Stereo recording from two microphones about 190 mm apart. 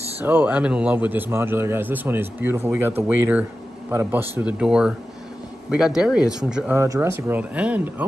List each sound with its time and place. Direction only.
0.2 s a man's voice: 10° right (ahead or behind)
6.8 s a man's voice: 15° right (ahead or behind)